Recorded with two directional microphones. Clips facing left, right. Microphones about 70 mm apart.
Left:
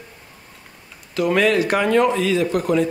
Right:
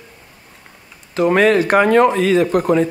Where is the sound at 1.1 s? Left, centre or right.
Right.